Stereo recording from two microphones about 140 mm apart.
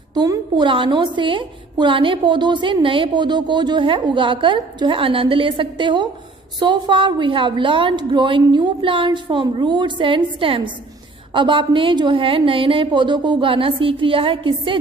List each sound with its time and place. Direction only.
0.1 s a woman's voice: 30° right (ahead or behind)